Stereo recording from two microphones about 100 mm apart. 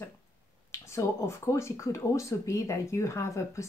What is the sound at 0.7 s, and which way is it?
Speech, 30° left (ahead or behind).